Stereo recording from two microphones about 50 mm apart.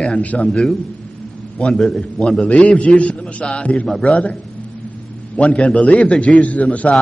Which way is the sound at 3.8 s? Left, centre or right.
Centre.